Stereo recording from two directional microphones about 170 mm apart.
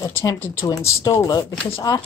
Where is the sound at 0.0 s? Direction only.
15° left (ahead or behind).